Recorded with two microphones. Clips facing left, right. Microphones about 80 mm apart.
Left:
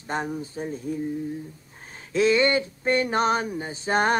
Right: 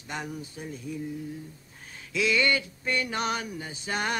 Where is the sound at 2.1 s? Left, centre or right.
Left.